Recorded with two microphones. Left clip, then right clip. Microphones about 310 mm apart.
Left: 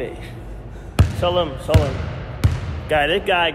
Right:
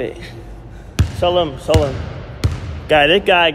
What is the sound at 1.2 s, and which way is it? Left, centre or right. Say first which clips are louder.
Speech: right 5 dB; right.